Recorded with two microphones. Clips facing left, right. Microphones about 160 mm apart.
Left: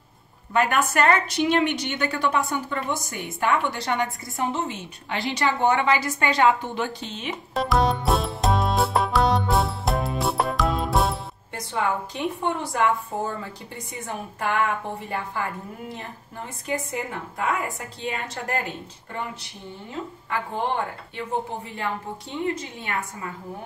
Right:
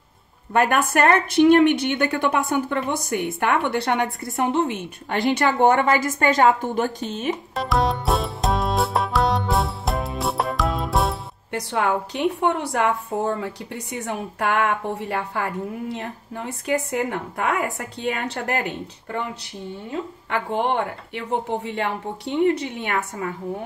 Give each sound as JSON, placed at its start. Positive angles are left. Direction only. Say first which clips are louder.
{"t": 0.5, "sound": "a woman's voice", "louder": "right 3 dB", "side_deg": -50}
{"t": 7.5, "sound": "music", "louder": "left 2 dB", "side_deg": 0}
{"t": 11.5, "sound": "a woman's voice", "louder": "right 4 dB", "side_deg": -65}
{"t": 21.1, "sound": "a woman's voice", "louder": "right 5 dB", "side_deg": -75}